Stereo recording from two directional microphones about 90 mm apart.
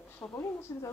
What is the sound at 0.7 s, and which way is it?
Speech, 35° left (ahead or behind).